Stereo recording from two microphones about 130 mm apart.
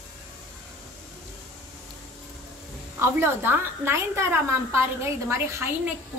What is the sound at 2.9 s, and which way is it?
A woman's voice, 20° right (ahead or behind).